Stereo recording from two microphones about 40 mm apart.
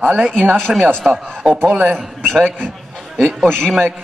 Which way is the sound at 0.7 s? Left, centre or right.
Centre.